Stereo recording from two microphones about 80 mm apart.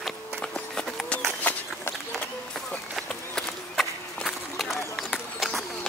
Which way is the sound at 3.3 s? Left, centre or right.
Centre.